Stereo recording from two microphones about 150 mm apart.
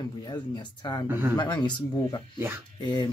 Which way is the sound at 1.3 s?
30° left (ahead or behind).